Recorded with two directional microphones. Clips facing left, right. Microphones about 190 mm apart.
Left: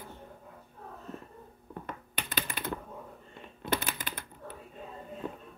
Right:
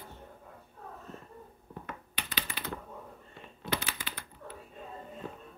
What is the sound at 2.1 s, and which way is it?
Typing, 50° left (ahead or behind).